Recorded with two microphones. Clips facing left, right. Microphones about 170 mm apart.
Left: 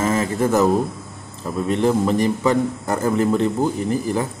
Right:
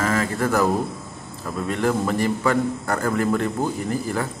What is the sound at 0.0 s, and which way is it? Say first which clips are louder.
A man's voice: left 3 dB; 20° left (ahead or behind).